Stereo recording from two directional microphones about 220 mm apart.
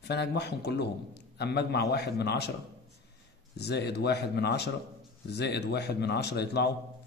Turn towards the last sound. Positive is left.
turn(degrees=50)  # may be behind; listen again after turning